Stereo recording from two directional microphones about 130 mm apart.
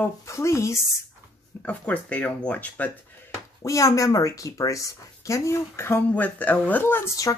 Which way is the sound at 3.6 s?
25° left (ahead or behind).